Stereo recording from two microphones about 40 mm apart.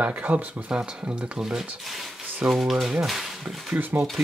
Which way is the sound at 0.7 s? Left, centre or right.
Right.